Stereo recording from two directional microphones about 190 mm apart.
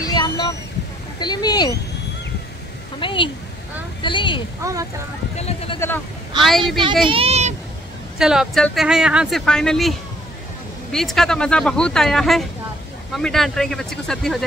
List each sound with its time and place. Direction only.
0.0 s a sound: 20° left (ahead or behind)
1.2 s speech: 20° left (ahead or behind)
3.0 s speech: 25° left (ahead or behind)
4.6 s speech: 15° right (ahead or behind)
5.3 s a sound: 35° left (ahead or behind)
6.4 s speech: centre (ahead or behind)
7.1 s a child's voice: 30° right (ahead or behind)
8.2 s speech: centre (ahead or behind)